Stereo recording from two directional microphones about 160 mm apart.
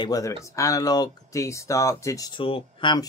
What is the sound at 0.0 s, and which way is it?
Speech, 20° left (ahead or behind).